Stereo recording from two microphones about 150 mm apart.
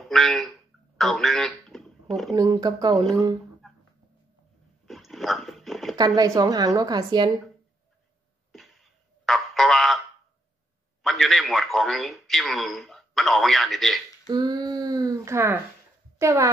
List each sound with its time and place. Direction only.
0.1 s a sound: centre (ahead or behind)
2.3 s a woman's voice: 25° right (ahead or behind)
4.8 s dog: centre (ahead or behind)
5.9 s a woman's voice: 25° right (ahead or behind)
8.5 s a sound: centre (ahead or behind)
11.0 s speech: centre (ahead or behind)
14.3 s a woman's voice: 25° right (ahead or behind)